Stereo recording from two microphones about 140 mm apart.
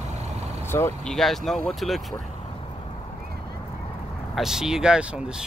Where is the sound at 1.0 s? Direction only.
Centre (ahead or behind).